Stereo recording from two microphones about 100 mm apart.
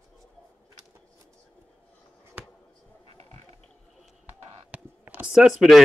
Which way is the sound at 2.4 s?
20° right (ahead or behind).